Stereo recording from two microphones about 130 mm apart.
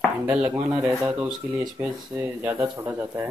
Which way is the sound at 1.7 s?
20° right (ahead or behind).